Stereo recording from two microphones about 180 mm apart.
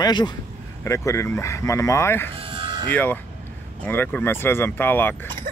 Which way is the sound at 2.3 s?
30° right (ahead or behind).